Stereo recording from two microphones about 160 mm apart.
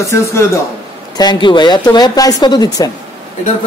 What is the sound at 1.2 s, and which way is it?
Speech, 30° left (ahead or behind).